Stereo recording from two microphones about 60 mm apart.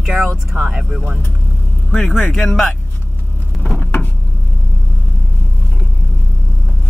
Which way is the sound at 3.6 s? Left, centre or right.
Left.